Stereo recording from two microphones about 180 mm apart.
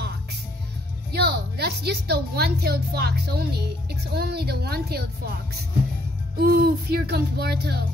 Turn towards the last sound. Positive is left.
turn(degrees=-60)  # may be behind; listen again after turning